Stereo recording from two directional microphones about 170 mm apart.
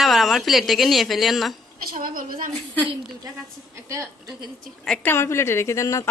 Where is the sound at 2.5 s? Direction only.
10° left (ahead or behind).